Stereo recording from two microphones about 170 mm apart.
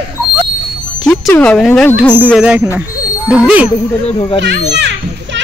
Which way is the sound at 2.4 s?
10° right (ahead or behind).